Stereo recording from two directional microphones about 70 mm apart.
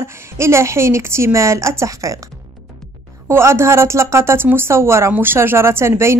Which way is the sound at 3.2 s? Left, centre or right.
Right.